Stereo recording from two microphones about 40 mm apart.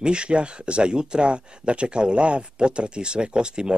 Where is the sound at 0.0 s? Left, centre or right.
Right.